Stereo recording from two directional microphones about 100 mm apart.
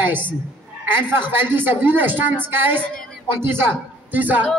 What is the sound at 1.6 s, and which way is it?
A woman's voice, 20° right (ahead or behind).